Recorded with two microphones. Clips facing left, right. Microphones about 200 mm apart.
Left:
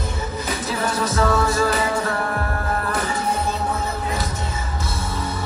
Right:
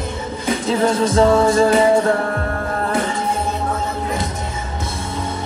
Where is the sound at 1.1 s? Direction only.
30° right (ahead or behind).